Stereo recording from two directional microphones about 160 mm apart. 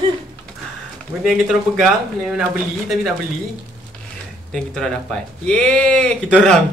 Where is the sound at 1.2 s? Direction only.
Centre (ahead or behind).